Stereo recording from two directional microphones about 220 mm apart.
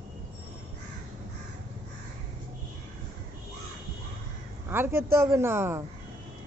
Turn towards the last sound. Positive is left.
turn(degrees=-10)  # may be behind; listen again after turning